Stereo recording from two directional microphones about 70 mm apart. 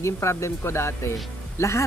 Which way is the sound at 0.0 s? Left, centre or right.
Left.